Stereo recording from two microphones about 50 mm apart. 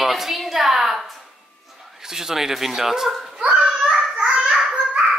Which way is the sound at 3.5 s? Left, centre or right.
Centre.